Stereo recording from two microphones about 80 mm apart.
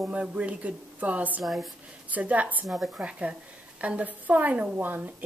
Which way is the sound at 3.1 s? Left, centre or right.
Centre.